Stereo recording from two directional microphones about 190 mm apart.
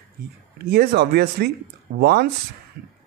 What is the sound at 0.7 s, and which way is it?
Speech, 55° right (ahead or behind).